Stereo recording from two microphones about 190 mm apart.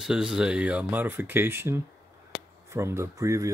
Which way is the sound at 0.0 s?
5° right (ahead or behind).